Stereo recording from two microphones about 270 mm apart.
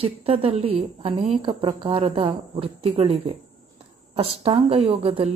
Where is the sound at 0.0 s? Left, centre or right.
Right.